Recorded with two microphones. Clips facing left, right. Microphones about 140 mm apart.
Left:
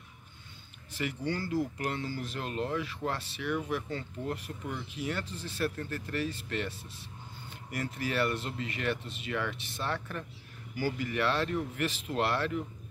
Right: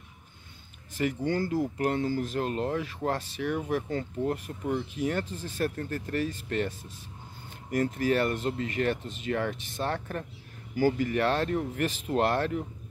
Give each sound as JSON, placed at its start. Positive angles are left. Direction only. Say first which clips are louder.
{"t": 0.9, "sound": "speech", "louder": "right 6 dB", "side_deg": -45}